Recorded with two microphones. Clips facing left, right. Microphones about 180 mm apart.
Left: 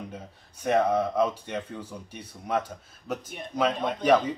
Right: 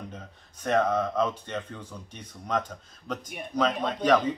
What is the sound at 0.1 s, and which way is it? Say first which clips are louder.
Speech: left 2 dB; 10° left (ahead or behind).